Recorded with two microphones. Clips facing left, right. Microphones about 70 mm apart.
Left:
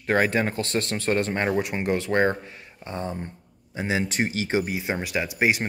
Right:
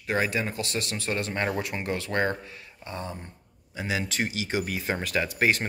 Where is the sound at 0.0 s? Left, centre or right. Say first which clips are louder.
Left 5 dB; left.